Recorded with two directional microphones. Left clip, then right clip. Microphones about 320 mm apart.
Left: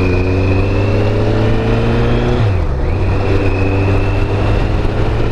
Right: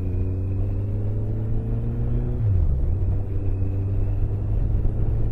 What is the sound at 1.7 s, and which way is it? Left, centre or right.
Vehicle, centre.